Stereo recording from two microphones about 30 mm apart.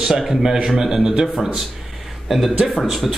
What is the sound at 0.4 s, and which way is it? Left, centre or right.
Speech, centre.